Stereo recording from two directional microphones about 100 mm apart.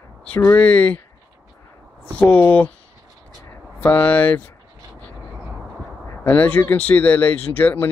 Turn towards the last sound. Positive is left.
turn(degrees=20)  # may be behind; listen again after turning